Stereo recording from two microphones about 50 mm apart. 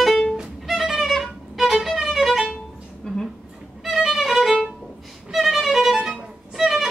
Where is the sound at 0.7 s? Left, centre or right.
Centre.